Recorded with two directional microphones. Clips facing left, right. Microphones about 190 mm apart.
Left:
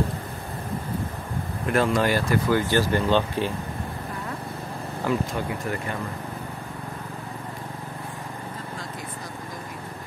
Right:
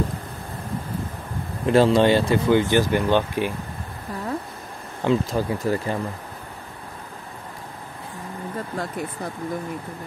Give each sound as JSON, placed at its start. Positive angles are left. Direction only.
{"t": 1.7, "sound": "speech", "side_deg": -30}
{"t": 5.0, "sound": "speech", "side_deg": -30}